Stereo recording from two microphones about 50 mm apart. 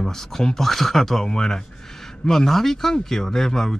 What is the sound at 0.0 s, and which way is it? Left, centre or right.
Speech, centre.